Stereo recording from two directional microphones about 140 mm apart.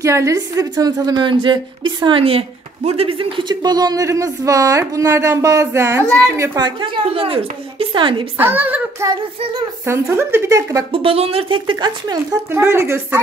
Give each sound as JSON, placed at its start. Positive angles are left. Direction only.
{"t": 0.0, "sound": "a woman's voice", "side_deg": -20}
{"t": 6.6, "sound": "speech", "side_deg": -40}
{"t": 8.4, "sound": "speech", "side_deg": -15}
{"t": 9.8, "sound": "a woman's voice", "side_deg": -20}
{"t": 10.9, "sound": "speech", "side_deg": -40}
{"t": 12.4, "sound": "speech", "side_deg": -15}